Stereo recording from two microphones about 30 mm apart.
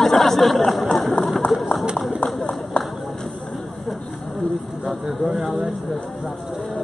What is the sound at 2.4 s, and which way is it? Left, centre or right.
Run, left.